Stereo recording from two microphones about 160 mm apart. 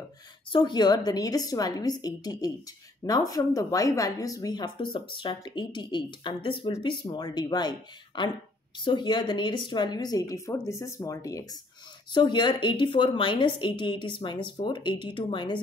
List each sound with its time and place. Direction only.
0.5 s a woman's voice: 30° left (ahead or behind)